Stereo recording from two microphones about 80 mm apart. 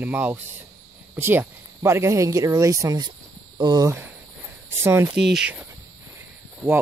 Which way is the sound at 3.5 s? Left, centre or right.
Right.